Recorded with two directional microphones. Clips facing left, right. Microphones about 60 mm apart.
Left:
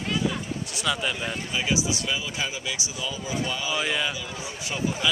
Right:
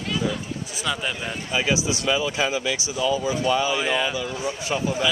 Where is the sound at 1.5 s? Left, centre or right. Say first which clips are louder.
Right 4 dB; right.